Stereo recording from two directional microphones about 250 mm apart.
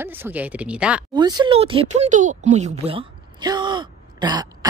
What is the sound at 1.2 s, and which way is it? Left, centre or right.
Speech, centre.